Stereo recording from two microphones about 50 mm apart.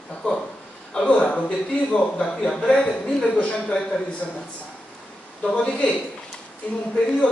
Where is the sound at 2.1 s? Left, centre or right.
Centre.